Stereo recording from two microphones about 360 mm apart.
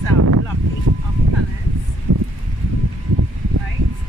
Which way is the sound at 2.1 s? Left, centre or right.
Right.